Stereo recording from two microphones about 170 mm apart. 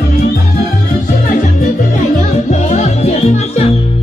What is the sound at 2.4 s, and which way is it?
Music, 40° left (ahead or behind).